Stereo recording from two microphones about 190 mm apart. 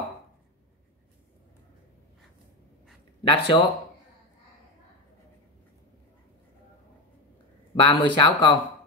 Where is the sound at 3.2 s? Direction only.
25° left (ahead or behind).